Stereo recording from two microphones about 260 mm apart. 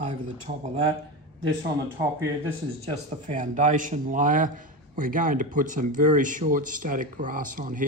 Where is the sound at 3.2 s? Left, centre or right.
Right.